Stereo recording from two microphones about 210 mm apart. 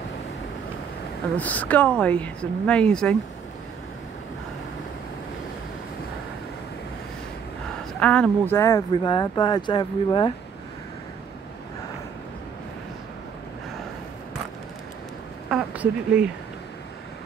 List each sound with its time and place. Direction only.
1.3 s speech: 5° left (ahead or behind)
8.0 s speech: 5° left (ahead or behind); by 10.3 s 20° left (ahead or behind)
15.5 s a sound: 5° right (ahead or behind)